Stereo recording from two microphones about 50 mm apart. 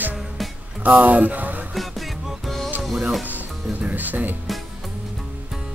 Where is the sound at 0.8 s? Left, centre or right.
Right.